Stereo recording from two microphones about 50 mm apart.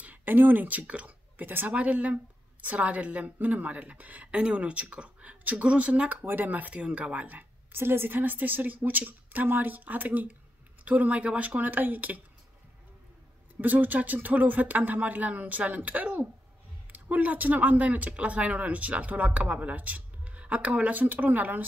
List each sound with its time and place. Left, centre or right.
0.0 s speech: right
1.4 s a woman's voice: right
1.7 s a woman's voice: right
6.2 s speech: right
7.7 s speech: right
13.6 s speech: right